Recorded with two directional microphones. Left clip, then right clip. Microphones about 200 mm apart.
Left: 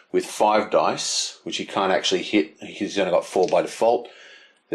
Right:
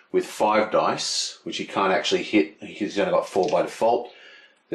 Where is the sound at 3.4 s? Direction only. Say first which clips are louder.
Left 2 dB; 40° right (ahead or behind).